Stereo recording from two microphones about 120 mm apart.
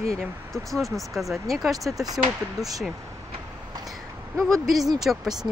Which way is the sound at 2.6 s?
30° right (ahead or behind).